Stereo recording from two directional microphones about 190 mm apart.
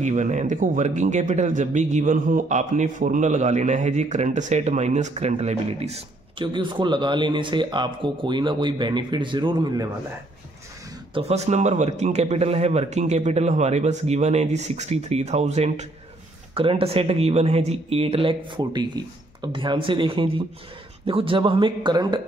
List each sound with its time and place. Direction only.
0.0 s speech: 40° right (ahead or behind); by 9.8 s 20° right (ahead or behind)
11.1 s speech: 35° right (ahead or behind)